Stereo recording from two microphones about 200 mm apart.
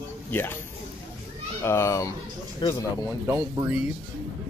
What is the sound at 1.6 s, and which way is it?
Speech, 15° left (ahead or behind).